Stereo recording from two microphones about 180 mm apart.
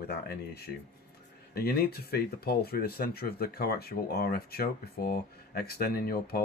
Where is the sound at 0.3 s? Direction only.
60° left (ahead or behind).